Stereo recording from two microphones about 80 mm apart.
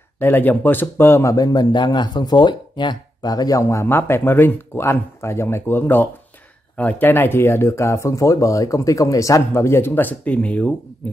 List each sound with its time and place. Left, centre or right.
0.2 s speech: left
1.2 s speech: left
3.6 s speech: left; by 10.7 s centre